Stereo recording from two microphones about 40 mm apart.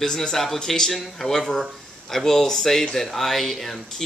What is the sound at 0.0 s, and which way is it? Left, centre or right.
Speech, centre.